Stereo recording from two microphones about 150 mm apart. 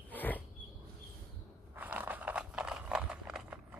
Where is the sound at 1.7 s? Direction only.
10° right (ahead or behind).